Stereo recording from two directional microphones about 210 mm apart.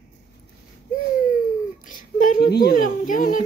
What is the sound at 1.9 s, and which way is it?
Speech, 40° left (ahead or behind).